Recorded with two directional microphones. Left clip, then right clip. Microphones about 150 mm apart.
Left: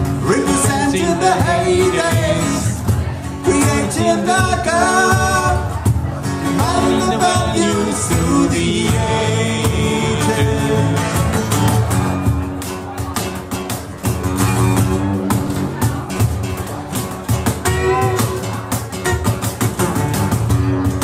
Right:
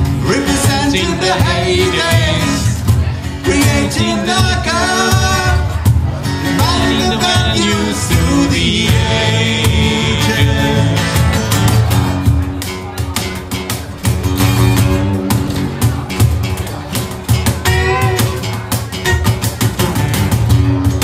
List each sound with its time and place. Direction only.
0.3 s music: 50° left (ahead or behind)
14.3 s music: 50° left (ahead or behind)
17.6 s music: 45° left (ahead or behind)